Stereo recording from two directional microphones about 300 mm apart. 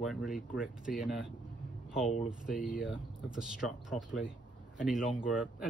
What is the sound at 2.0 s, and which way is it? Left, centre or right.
Speech, left.